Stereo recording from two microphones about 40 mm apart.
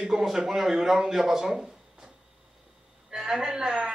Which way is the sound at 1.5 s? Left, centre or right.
Centre.